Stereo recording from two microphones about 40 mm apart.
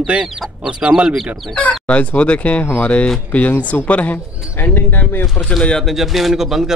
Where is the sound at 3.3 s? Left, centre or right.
Left.